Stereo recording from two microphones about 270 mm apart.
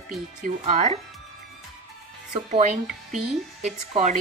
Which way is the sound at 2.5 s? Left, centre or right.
Right.